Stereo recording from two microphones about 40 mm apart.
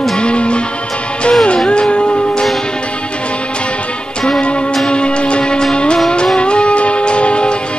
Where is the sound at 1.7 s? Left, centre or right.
Left.